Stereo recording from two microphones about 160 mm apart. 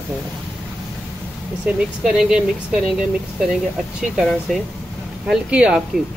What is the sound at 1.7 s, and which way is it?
Speech, 5° right (ahead or behind).